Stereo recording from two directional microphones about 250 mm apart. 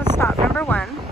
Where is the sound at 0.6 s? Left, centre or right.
Centre.